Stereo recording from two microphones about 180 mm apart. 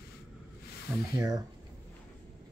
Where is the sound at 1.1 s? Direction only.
20° right (ahead or behind).